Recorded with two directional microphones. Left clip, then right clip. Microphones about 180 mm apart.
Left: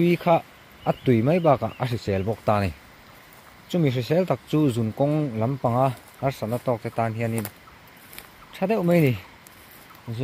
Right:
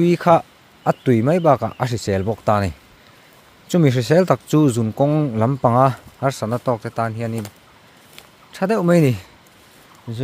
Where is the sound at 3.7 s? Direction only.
40° right (ahead or behind); by 7.4 s 15° right (ahead or behind).